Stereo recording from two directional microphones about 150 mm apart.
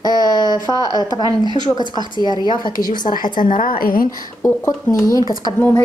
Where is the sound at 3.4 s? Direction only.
60° left (ahead or behind).